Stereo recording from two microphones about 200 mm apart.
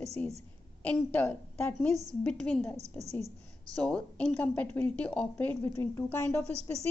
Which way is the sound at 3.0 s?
35° right (ahead or behind).